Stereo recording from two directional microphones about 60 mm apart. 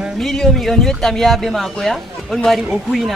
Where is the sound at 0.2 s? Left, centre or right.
Centre.